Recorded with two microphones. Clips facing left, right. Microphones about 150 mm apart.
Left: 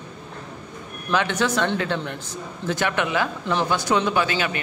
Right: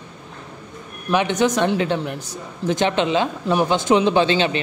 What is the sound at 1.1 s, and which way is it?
Speech, 15° right (ahead or behind).